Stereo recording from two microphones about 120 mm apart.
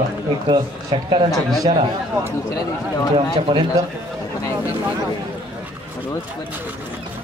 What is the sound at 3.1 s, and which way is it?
Speech, 50° right (ahead or behind).